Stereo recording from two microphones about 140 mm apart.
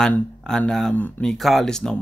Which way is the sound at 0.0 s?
5° left (ahead or behind).